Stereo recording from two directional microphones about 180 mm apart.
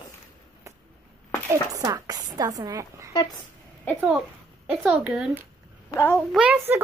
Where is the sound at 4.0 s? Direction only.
5° right (ahead or behind).